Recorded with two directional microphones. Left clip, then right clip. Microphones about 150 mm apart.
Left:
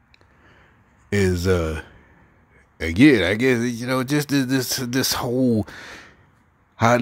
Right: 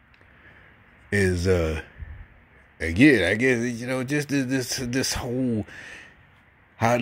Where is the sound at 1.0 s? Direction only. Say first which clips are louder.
Left 2 dB; 30° left (ahead or behind).